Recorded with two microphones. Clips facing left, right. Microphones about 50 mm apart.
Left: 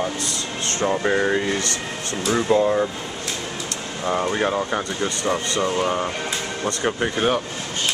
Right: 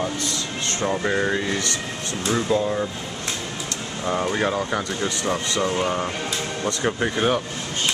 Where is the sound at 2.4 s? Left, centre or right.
Left.